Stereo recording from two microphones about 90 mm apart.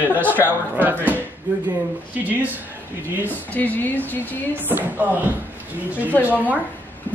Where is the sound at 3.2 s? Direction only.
20° left (ahead or behind).